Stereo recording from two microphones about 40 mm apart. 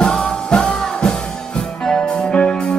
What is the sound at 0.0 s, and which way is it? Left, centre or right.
Music, centre.